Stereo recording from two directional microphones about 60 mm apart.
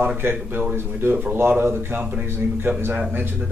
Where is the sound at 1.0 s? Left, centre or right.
Right.